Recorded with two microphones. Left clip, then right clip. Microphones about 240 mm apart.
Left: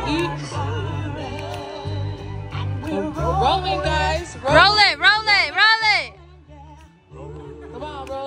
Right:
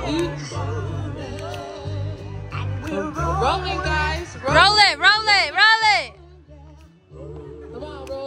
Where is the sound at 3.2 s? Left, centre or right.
Centre.